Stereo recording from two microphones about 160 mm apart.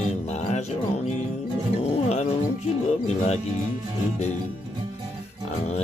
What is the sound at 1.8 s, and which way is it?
Livestock, 40° left (ahead or behind).